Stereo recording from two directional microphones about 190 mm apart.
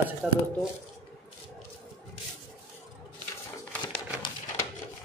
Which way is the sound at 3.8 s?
25° left (ahead or behind).